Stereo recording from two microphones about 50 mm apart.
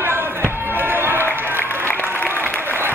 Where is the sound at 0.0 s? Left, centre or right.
Right.